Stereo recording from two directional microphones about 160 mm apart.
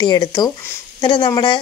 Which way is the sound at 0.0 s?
25° left (ahead or behind).